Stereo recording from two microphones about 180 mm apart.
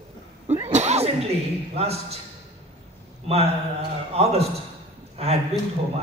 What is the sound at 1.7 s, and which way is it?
Speech, 35° right (ahead or behind).